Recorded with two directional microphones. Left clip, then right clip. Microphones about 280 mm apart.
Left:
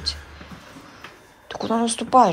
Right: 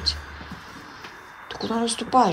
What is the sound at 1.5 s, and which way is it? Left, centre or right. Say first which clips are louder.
Speech: left 3 dB; centre.